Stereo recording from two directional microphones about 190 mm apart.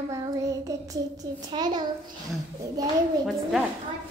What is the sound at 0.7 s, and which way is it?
Female singing, 15° right (ahead or behind).